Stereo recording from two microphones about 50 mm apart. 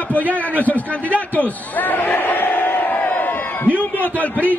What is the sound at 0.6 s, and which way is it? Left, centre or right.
A man's voice, left.